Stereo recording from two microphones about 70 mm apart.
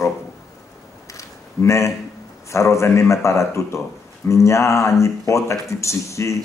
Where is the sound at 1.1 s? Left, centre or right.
Left.